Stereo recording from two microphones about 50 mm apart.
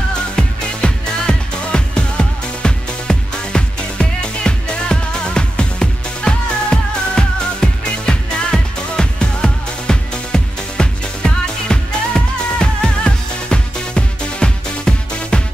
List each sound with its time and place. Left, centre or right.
0.4 s music: centre